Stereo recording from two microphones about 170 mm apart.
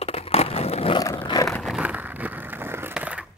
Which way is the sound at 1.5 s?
Centre (ahead or behind).